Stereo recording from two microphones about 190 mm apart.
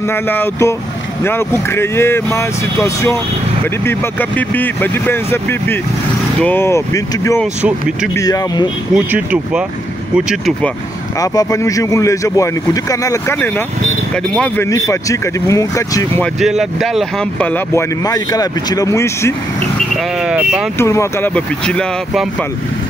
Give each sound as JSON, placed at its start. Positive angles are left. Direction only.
{"t": 0.1, "sound": "speech", "side_deg": 10}
{"t": 8.9, "sound": "speech", "side_deg": -5}
{"t": 11.1, "sound": "speech", "side_deg": 20}
{"t": 14.7, "sound": "speech", "side_deg": 15}
{"t": 16.3, "sound": "speech", "side_deg": 0}
{"t": 18.0, "sound": "speech", "side_deg": 20}
{"t": 20.2, "sound": "speech", "side_deg": -5}
{"t": 20.7, "sound": "speech", "side_deg": 15}